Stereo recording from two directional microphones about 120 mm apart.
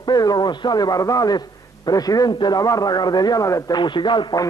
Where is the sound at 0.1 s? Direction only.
35° left (ahead or behind).